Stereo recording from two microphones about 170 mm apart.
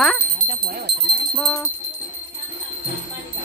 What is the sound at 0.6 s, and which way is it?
Speech, 75° right (ahead or behind).